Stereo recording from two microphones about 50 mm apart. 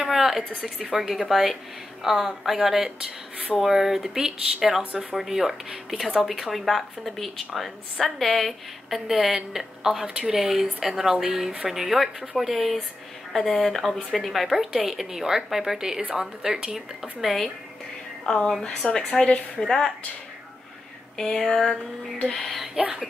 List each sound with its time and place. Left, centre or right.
0.0 s a sound: centre
0.8 s speech: centre
18.2 s a woman's voice: centre
18.8 s speech: left
19.6 s speech: centre
21.2 s speech: centre
22.2 s speech: centre
22.8 s speech: centre